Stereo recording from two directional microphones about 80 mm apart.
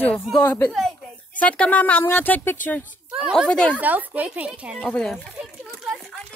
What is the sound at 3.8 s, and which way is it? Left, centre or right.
Speech, right.